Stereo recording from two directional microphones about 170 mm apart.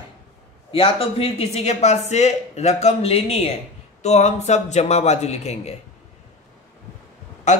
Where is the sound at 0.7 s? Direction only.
35° left (ahead or behind).